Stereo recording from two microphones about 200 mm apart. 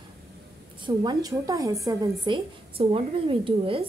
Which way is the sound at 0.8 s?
20° right (ahead or behind).